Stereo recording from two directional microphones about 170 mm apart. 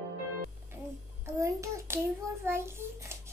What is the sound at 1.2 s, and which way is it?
A child's voice, 15° right (ahead or behind).